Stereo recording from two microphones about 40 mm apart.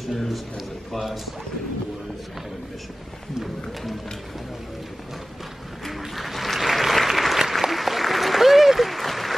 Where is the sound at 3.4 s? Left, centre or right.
Centre.